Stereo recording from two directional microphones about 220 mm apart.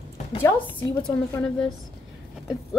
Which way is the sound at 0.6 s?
20° left (ahead or behind).